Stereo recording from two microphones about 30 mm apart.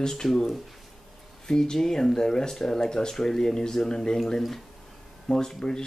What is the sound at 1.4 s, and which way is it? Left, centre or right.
Speech, left.